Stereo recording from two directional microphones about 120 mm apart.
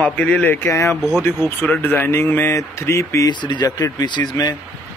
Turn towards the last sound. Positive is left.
turn(degrees=35)  # may be behind; listen again after turning